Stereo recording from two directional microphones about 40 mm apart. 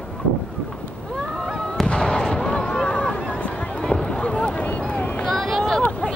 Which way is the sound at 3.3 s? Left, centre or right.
Left.